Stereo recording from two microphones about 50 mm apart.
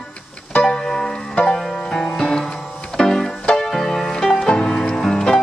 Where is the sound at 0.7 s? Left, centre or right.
Centre.